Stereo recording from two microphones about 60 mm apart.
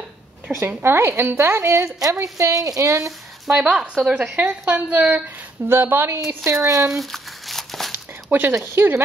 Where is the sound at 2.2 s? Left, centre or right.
Right.